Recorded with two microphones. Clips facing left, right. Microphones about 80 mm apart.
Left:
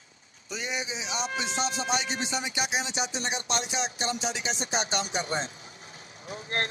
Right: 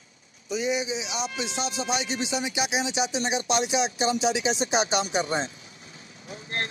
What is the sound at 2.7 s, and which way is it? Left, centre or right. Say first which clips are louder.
Speech: right 4 dB; left.